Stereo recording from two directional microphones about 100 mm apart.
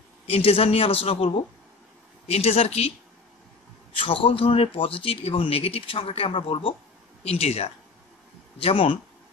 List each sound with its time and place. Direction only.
0.3 s a woman's voice: 75° left (ahead or behind)
2.2 s speech: 90° left
3.9 s speech: 60° left (ahead or behind)
7.2 s speech: 90° left
8.5 s a woman's voice: 70° left (ahead or behind)